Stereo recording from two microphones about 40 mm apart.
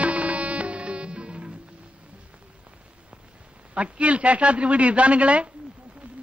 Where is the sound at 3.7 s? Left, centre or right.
Right.